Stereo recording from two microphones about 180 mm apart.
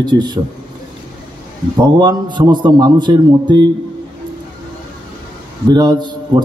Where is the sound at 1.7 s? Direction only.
25° right (ahead or behind).